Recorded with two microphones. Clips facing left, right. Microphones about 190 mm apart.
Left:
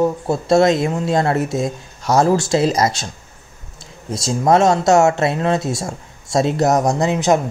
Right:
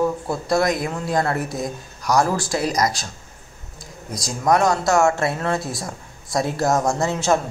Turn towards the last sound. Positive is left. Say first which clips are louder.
# left 4 dB
turn(degrees=15)  # may be behind; listen again after turning